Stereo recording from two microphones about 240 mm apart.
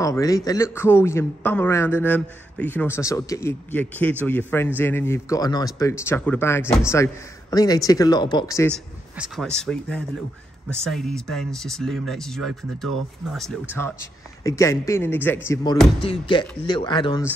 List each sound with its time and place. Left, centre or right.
0.0 s a man's voice: centre